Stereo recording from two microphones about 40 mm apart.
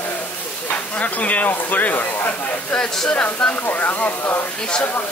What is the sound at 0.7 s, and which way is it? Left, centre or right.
Speech, left.